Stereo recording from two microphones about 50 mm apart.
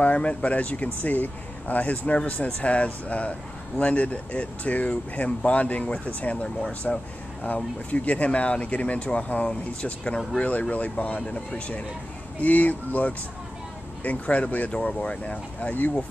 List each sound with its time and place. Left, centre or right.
0.0 s speech: left
6.8 s speech: centre
7.4 s speech: left